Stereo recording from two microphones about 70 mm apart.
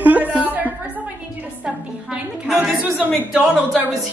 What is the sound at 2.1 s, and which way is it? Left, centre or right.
A woman's voice, centre.